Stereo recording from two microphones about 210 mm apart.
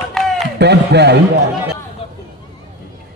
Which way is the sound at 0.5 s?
55° right (ahead or behind).